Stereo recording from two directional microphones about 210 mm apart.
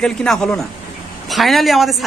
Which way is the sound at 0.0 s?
5° left (ahead or behind).